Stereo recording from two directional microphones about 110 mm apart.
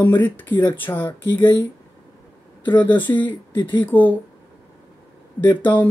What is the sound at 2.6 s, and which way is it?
Speech, 15° left (ahead or behind).